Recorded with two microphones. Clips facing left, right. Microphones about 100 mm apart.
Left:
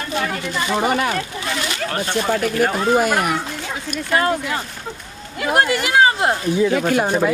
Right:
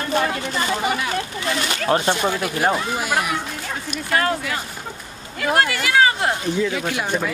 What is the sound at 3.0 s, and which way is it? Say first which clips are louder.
Speech: left 5 dB; 50° left (ahead or behind).